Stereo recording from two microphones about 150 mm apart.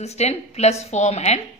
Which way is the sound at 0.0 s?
45° left (ahead or behind).